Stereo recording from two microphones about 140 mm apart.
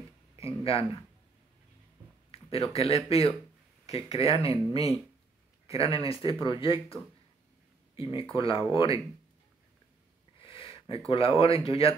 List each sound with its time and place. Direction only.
2.3 s speech: 45° left (ahead or behind)
10.4 s speech: 40° left (ahead or behind)